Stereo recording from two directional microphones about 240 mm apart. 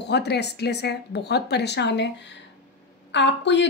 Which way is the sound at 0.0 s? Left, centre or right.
Left.